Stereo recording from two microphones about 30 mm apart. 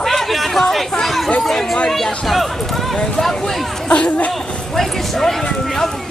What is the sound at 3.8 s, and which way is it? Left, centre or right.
Chatter, left.